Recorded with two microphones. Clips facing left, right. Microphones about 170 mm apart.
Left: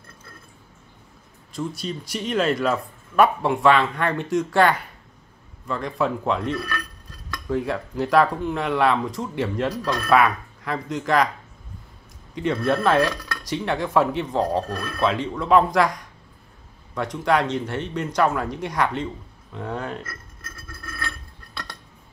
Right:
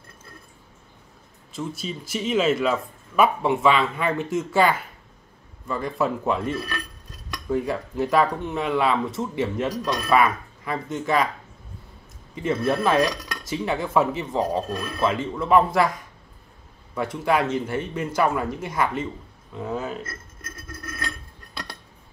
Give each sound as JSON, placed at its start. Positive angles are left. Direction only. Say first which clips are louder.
{"t": 1.8, "sound": "speech", "louder": "even", "side_deg": -5}
{"t": 6.5, "sound": "dishes", "louder": "left 1 dB", "side_deg": -20}
{"t": 7.4, "sound": "speech", "louder": "even", "side_deg": 0}
{"t": 9.8, "sound": "speech", "louder": "left 1 dB", "side_deg": -15}
{"t": 10.0, "sound": "speech", "louder": "left 2 dB", "side_deg": 0}
{"t": 12.4, "sound": "speech", "louder": "left 1 dB", "side_deg": 0}
{"t": 14.7, "sound": "speech", "louder": "even", "side_deg": -20}
{"t": 15.0, "sound": "speech", "louder": "left 1 dB", "side_deg": 0}
{"t": 20.0, "sound": "burping", "louder": "right 2 dB", "side_deg": -20}